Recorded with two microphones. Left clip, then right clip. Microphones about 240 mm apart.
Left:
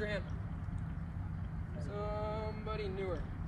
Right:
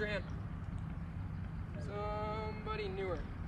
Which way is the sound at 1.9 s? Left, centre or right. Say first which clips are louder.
Even; centre.